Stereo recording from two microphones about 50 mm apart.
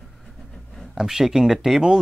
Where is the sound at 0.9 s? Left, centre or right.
Centre.